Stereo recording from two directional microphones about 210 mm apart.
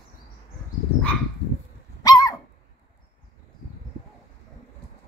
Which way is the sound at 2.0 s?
15° left (ahead or behind).